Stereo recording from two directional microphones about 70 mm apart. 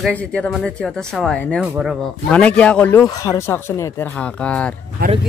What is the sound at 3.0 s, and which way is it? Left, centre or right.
Speech, left.